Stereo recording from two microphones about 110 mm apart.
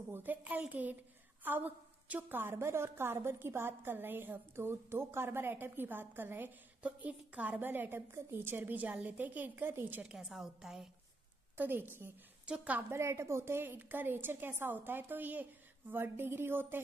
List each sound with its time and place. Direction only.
0.1 s a woman's voice: 15° right (ahead or behind)
10.1 s a woman's voice: 5° right (ahead or behind)
11.5 s a woman's voice: 15° right (ahead or behind)
12.9 s a woman's voice: 25° right (ahead or behind)